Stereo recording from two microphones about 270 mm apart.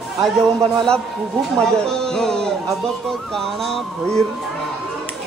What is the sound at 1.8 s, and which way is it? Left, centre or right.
Music, centre.